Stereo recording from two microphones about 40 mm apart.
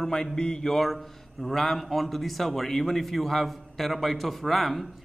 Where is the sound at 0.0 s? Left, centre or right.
Centre.